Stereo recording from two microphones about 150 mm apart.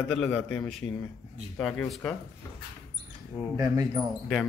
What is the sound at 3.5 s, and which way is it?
Speech, 25° right (ahead or behind).